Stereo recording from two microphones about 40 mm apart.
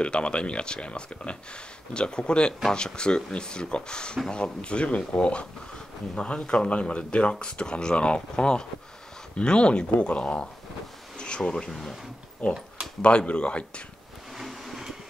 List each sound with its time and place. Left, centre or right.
0.0 s speech: left
12.4 s speech: left
14.3 s vehicle: centre